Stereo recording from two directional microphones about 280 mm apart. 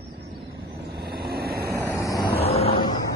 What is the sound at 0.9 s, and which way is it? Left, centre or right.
Vehicle, right.